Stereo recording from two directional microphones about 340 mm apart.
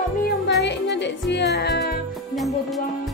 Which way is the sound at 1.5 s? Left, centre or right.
Left.